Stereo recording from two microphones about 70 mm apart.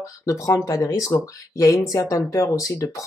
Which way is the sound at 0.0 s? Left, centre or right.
Left.